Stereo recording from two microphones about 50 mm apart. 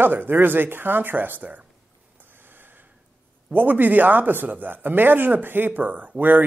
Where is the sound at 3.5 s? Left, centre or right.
Right.